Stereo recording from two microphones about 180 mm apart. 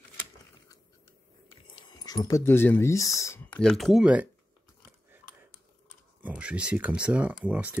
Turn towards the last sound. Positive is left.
turn(degrees=-10)  # may be behind; listen again after turning